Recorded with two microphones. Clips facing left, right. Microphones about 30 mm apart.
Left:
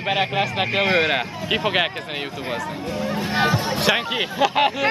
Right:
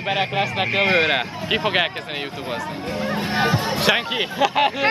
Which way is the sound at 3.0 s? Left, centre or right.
Right.